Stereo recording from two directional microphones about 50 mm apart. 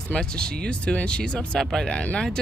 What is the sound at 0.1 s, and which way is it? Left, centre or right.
Speech, centre.